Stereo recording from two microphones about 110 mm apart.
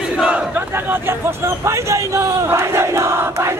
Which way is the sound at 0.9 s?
25° right (ahead or behind).